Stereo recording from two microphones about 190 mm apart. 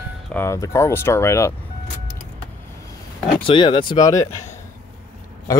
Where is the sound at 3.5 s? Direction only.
25° left (ahead or behind).